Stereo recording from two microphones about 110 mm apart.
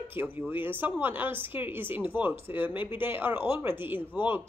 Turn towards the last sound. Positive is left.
turn(degrees=-20)  # may be behind; listen again after turning